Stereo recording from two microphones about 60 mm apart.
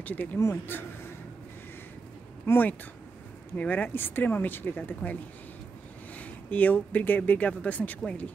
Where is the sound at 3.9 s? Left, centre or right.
Left.